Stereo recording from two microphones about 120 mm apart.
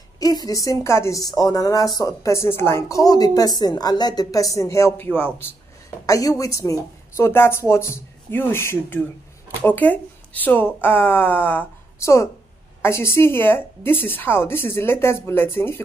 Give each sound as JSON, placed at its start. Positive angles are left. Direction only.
{"t": 0.2, "sound": "a woman's voice", "side_deg": 30}
{"t": 6.0, "sound": "a woman's voice", "side_deg": 30}